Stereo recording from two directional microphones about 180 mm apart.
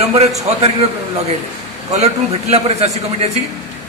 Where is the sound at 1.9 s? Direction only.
40° right (ahead or behind).